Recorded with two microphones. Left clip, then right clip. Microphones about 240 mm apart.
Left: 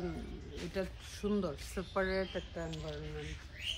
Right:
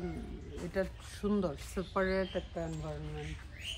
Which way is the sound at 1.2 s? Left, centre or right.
Centre.